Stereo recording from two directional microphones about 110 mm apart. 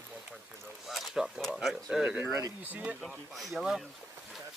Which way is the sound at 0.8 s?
Centre (ahead or behind).